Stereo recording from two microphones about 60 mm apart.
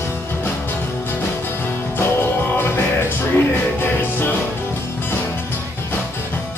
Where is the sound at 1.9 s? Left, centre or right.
Left.